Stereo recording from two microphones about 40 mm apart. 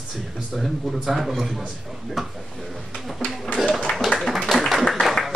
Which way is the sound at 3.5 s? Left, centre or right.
Centre.